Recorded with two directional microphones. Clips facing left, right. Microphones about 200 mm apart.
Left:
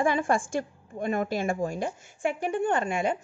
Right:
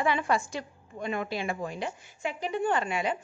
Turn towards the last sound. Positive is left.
turn(degrees=45)  # may be behind; listen again after turning